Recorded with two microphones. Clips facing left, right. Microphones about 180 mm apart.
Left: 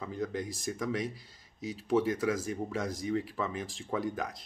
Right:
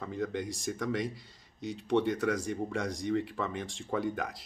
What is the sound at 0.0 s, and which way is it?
A man's voice, centre (ahead or behind).